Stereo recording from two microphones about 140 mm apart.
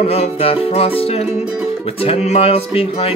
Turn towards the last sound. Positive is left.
turn(degrees=45)  # may be behind; listen again after turning